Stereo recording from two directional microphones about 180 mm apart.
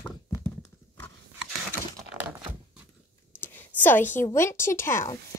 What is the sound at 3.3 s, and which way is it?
A woman's voice, 10° left (ahead or behind).